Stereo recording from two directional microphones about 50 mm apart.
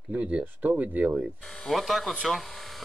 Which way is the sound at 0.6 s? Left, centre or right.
Right.